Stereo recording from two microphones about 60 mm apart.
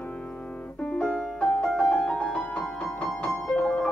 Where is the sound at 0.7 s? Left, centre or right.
Centre.